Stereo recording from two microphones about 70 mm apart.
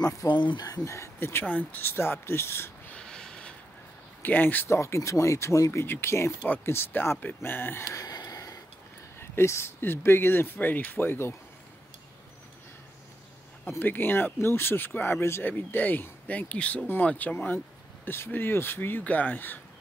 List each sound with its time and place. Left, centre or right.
0.3 s speech: left
0.8 s speech: left
1.4 s speech: left
2.9 s snort: centre
4.2 s speech: left
4.6 s speech: left
7.9 s a sound: left
9.2 s speech: left
13.7 s speech: left
16.8 s speech: left